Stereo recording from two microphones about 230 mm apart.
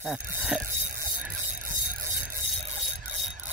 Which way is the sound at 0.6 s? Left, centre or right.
Right.